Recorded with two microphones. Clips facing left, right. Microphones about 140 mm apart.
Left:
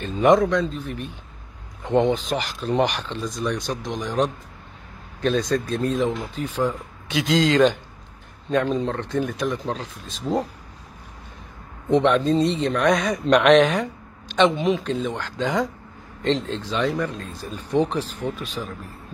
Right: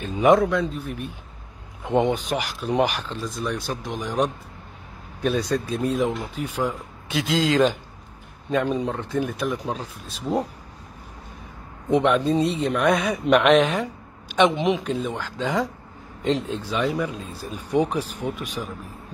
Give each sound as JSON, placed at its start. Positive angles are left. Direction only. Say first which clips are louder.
{"t": 0.0, "sound": "speech", "louder": "even", "side_deg": -5}
{"t": 11.9, "sound": "speech", "louder": "left 1 dB", "side_deg": -10}
{"t": 14.3, "sound": "speech", "louder": "even", "side_deg": -15}